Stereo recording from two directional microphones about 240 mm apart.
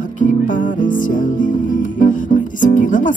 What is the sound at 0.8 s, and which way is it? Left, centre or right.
Music, left.